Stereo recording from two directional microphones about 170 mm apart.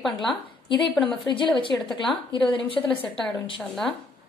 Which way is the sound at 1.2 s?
25° left (ahead or behind).